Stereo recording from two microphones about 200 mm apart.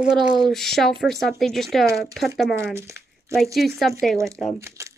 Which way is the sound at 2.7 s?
15° right (ahead or behind).